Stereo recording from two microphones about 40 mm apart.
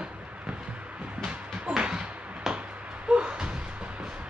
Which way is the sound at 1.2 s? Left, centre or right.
Centre.